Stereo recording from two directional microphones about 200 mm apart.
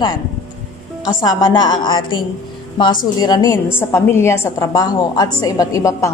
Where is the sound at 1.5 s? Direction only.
20° left (ahead or behind).